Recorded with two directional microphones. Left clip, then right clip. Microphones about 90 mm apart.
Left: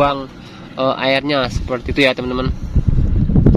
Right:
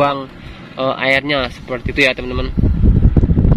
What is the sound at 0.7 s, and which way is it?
Speech, 15° left (ahead or behind).